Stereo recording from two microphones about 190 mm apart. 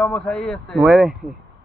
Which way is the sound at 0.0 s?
5° left (ahead or behind).